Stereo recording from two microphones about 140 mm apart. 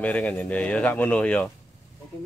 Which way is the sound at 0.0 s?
10° left (ahead or behind).